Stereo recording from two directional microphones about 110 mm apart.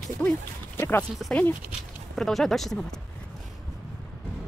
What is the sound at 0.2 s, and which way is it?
Speech, 10° left (ahead or behind).